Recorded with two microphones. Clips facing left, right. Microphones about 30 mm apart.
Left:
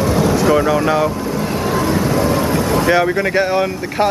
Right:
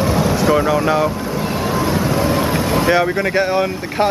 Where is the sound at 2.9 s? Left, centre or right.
Centre.